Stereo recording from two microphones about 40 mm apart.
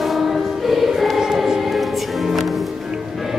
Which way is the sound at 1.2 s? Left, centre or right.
Centre.